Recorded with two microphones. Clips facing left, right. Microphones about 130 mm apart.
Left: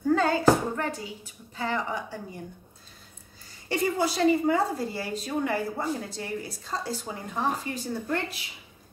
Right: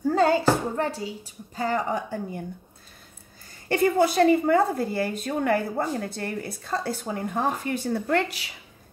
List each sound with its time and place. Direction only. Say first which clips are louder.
0.1 s a sound: right 3 dB; 35° right (ahead or behind)
0.7 s a woman's voice: right 4 dB; 35° right (ahead or behind)
3.6 s a woman's voice: right 5 dB; 55° right (ahead or behind); by 8.5 s 80° right